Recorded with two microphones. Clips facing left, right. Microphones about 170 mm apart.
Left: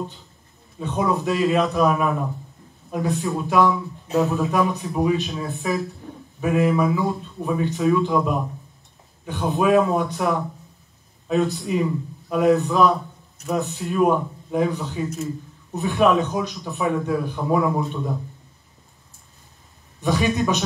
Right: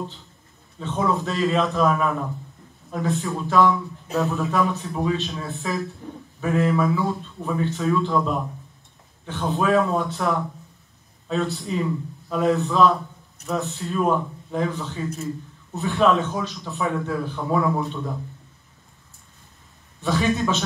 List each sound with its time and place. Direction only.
0.7 s a man's voice: 15° left (ahead or behind)
15.0 s a man's voice: centre (ahead or behind)
15.7 s a man's voice: 15° left (ahead or behind)
20.0 s a man's voice: 15° left (ahead or behind)